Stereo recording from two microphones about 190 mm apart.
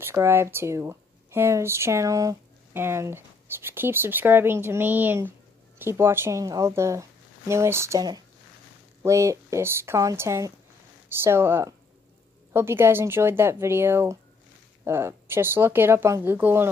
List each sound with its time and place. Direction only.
0.0 s speech: 10° right (ahead or behind)